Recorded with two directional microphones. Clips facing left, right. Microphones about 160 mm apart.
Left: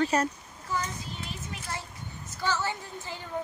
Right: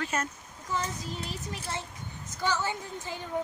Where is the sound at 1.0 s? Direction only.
40° right (ahead or behind).